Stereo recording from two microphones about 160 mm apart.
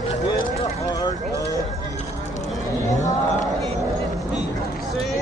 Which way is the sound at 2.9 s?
20° left (ahead or behind).